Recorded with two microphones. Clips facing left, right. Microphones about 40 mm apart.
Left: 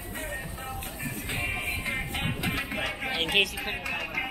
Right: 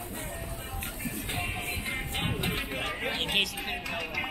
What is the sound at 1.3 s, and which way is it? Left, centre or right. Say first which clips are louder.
Music: left 4 dB; centre.